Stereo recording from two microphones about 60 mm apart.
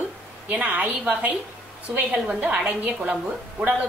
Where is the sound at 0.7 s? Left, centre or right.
Right.